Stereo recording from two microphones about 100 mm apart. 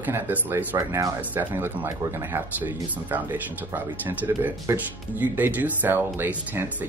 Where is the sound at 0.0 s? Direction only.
20° right (ahead or behind).